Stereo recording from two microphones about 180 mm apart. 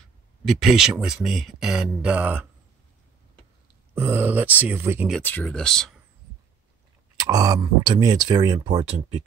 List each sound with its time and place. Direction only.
0.5 s speech: centre (ahead or behind)
3.9 s speech: 15° right (ahead or behind)
5.1 s speech: 10° left (ahead or behind)
7.2 s speech: 20° right (ahead or behind)